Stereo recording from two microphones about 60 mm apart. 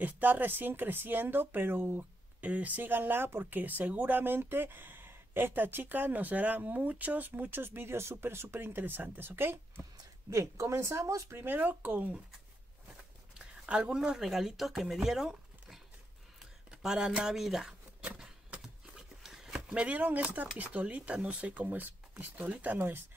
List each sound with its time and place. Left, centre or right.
0.0 s speech: right
2.4 s speech: right
10.3 s speech: right
11.4 s speech: right
12.9 s a sound: centre
16.8 s speech: centre
18.6 s a sound: centre
20.3 s speech: right
22.8 s speech: right